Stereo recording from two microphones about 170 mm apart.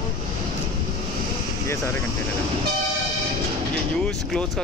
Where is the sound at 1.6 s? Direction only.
15° left (ahead or behind).